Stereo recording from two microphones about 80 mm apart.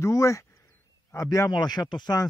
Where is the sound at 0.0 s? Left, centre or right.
Left.